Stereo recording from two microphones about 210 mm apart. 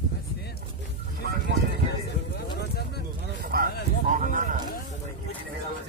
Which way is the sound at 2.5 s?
50° left (ahead or behind).